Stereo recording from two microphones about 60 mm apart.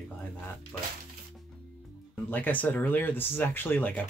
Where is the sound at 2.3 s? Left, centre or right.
Left.